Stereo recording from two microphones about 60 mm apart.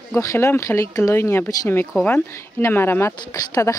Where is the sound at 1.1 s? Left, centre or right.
Left.